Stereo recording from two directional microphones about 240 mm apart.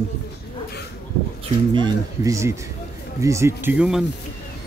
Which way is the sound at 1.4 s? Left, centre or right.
Centre.